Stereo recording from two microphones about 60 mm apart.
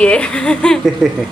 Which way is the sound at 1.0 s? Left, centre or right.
Centre.